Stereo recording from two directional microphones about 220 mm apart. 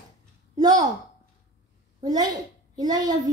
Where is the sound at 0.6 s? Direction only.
20° right (ahead or behind).